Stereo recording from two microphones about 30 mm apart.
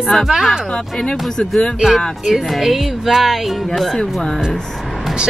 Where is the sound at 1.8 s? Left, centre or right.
Centre.